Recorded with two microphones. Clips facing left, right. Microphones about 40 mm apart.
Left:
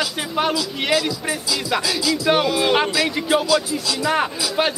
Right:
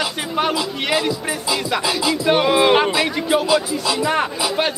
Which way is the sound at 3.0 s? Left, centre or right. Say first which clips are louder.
Right 1 dB; centre.